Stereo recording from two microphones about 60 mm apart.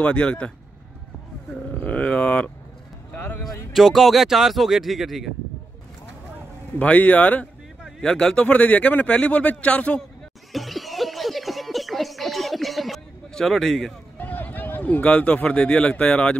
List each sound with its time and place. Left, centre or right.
0.0 s speech: centre
1.8 s speech: left
3.1 s a sound: left
3.7 s speech: centre
6.8 s speech: left
8.0 s speech: centre
10.5 s a sound: centre
13.3 s a man's voice: centre
14.1 s speech: left